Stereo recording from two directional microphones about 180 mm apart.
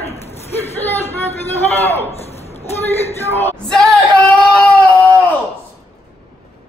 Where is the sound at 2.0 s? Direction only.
35° left (ahead or behind).